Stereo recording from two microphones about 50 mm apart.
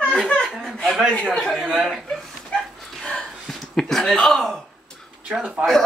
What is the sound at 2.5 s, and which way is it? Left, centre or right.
Dog, centre.